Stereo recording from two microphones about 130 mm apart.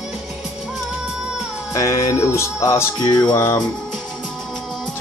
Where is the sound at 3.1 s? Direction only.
30° left (ahead or behind).